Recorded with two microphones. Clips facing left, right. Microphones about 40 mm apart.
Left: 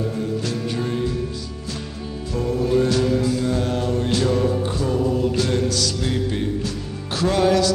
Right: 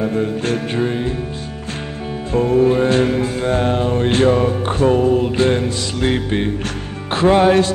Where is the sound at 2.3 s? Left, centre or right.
Right.